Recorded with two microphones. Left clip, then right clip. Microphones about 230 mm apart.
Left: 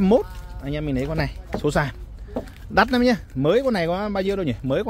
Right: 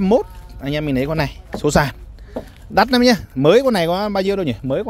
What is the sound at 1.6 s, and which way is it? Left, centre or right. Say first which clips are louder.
Speech: right 6 dB; right.